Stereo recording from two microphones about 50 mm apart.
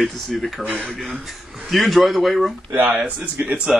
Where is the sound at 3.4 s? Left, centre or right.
Right.